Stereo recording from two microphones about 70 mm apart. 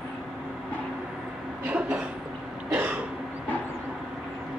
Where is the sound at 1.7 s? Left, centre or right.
Centre.